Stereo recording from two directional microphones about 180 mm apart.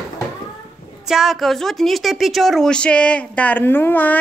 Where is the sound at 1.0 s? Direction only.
Centre (ahead or behind).